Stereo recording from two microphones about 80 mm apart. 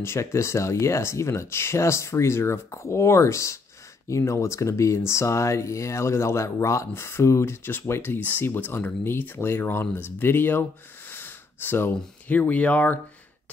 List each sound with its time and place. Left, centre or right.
0.0 s speech: left; by 13.0 s centre